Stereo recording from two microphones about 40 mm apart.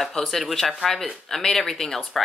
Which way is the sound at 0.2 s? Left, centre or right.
Centre.